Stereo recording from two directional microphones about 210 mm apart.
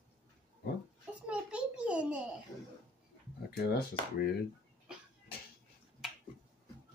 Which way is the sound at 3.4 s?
50° left (ahead or behind).